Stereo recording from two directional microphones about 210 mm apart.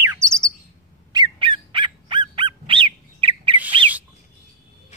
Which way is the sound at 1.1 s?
20° right (ahead or behind).